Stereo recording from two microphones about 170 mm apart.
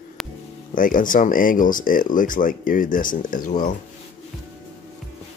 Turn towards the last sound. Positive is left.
turn(degrees=55)  # may be behind; listen again after turning